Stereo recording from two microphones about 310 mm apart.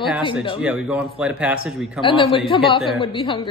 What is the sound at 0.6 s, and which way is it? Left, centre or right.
Speech, centre.